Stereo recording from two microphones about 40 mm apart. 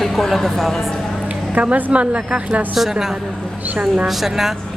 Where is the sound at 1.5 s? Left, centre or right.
Right.